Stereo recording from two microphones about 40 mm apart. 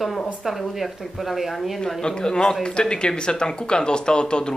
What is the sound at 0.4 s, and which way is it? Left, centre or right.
Speech, centre.